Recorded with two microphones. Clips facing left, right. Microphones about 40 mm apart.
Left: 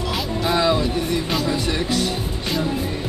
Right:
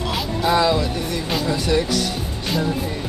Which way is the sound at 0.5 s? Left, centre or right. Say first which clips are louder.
Even; centre.